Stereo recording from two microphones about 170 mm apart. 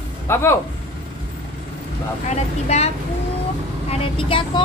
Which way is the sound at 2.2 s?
40° left (ahead or behind).